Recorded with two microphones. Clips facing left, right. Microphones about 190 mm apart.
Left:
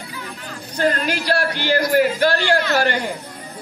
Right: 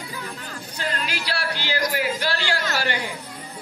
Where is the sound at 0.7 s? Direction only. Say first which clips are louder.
Left 10 dB; 50° left (ahead or behind).